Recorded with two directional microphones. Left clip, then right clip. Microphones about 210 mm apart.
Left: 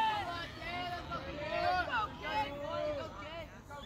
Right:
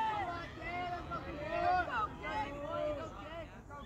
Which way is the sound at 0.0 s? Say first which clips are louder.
Left 2 dB; 35° left (ahead or behind).